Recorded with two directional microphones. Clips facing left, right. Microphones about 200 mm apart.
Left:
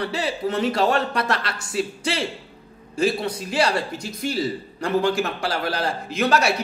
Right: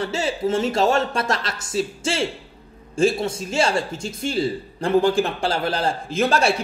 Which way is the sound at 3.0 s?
25° right (ahead or behind).